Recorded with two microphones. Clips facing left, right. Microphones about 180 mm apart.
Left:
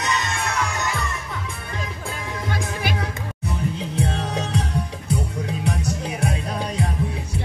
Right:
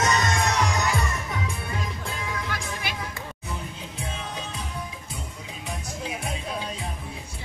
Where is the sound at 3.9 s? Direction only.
75° left (ahead or behind).